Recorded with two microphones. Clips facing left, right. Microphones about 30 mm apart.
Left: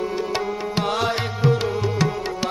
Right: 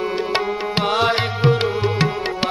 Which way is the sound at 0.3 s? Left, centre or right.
Right.